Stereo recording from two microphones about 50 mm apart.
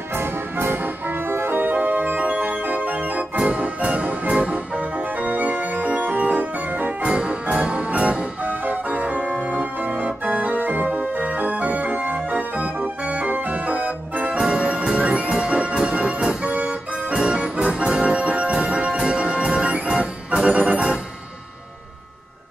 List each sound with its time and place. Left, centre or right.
0.1 s music: right
7.1 s music: centre; by 12.9 s right
13.0 s organ: right
14.4 s music: centre
20.5 s organ: right